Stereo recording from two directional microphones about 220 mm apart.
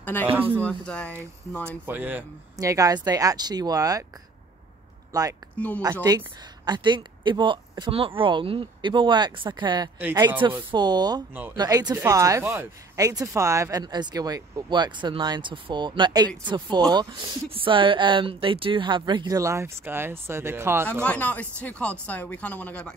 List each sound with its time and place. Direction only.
0.0 s speech: 10° left (ahead or behind)
1.6 s speech: 10° right (ahead or behind)
5.1 s speech: 15° right (ahead or behind)
9.9 s speech: 10° right (ahead or behind)
10.7 s speech: 20° right (ahead or behind)
21.0 s speech: 5° left (ahead or behind)